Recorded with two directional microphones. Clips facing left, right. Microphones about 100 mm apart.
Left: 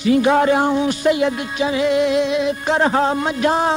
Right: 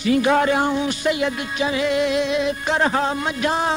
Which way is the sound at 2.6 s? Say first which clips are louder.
Left 5 dB; 30° left (ahead or behind).